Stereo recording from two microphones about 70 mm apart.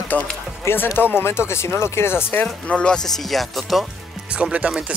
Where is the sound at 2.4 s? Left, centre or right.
Centre.